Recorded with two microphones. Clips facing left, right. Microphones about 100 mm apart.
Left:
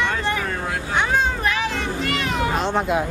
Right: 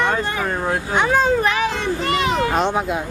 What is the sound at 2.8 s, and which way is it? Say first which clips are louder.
Speech: left 1 dB; centre (ahead or behind).